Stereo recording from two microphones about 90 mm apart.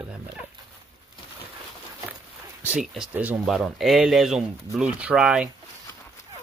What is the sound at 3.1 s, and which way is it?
Speech, 20° right (ahead or behind).